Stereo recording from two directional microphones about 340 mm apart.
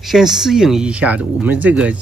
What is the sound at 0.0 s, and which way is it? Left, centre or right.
Speech, centre.